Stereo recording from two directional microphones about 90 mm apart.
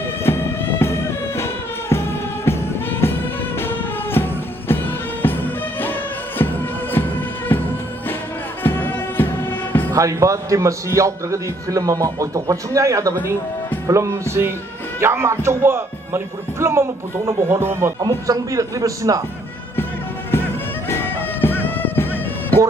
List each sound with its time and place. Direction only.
0.2 s music: 25° left (ahead or behind)
8.6 s music: 25° left (ahead or behind)
9.9 s a man's voice: 35° right (ahead or behind)
19.8 s music: 25° left (ahead or behind)
20.9 s a sound: 25° left (ahead or behind)